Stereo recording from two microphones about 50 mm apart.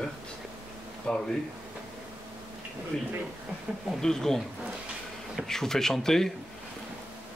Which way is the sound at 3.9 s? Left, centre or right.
Centre.